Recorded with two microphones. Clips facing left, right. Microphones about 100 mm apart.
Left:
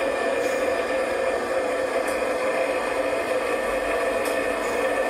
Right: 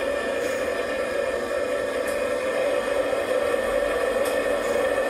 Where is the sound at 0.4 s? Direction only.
Centre (ahead or behind).